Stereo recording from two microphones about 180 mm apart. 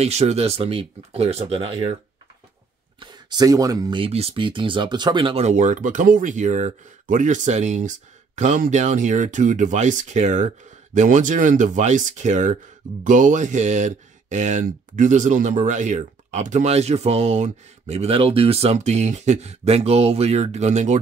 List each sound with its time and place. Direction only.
0.0 s speech: 35° right (ahead or behind)
3.0 s speech: 25° right (ahead or behind); by 21.0 s 40° right (ahead or behind)